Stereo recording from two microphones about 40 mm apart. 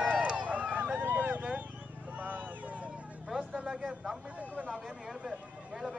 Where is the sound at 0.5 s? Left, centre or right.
Right.